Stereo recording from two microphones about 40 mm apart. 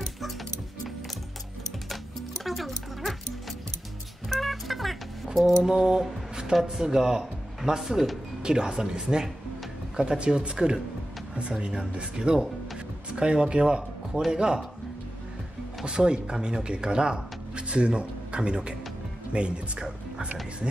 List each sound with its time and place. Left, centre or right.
2.4 s music: centre
4.4 s music: centre
6.5 s speech: centre
13.1 s speech: right
15.8 s speech: right